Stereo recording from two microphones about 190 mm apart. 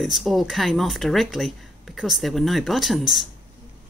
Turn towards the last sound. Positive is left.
turn(degrees=0)  # may be behind; listen again after turning